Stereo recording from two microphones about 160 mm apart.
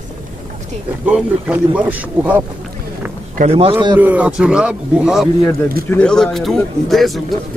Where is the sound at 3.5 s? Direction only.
35° right (ahead or behind).